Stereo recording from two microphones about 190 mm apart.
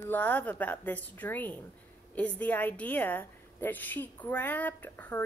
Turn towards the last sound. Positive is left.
turn(degrees=10)  # may be behind; listen again after turning